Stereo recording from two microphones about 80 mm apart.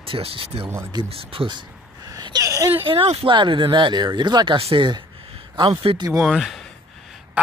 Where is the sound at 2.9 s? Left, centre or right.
Right.